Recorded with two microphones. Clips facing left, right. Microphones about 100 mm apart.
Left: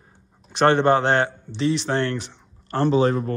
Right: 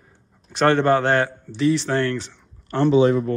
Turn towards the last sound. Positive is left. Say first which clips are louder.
# right 3 dB
turn(degrees=40)  # may be behind; listen again after turning